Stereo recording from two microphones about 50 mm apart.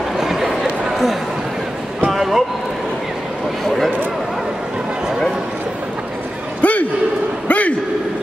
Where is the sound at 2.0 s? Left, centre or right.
Centre.